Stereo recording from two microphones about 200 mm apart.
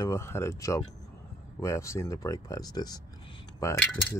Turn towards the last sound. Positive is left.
turn(degrees=5)  # may be behind; listen again after turning